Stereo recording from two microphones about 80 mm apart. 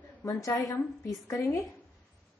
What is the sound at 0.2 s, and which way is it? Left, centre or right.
A woman's voice, left.